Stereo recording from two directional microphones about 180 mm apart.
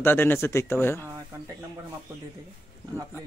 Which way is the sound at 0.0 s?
10° left (ahead or behind).